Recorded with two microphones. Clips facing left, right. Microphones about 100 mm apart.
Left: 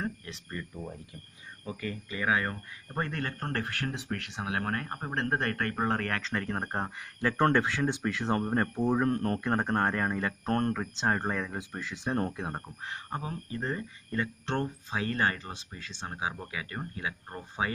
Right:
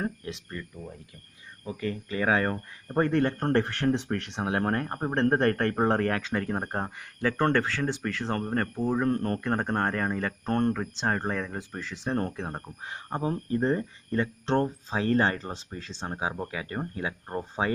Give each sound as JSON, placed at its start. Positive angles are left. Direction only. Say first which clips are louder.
{"t": 0.5, "sound": "speech", "louder": "even", "side_deg": 10}
{"t": 1.8, "sound": "speech", "louder": "right 6 dB", "side_deg": -35}
{"t": 2.5, "sound": "speech", "louder": "right 8 dB", "side_deg": -20}
{"t": 8.9, "sound": "speech", "louder": "right 3 dB", "side_deg": 0}
{"t": 12.8, "sound": "speech", "louder": "right 8 dB", "side_deg": -20}
{"t": 14.6, "sound": "speech", "louder": "right 5 dB", "side_deg": -30}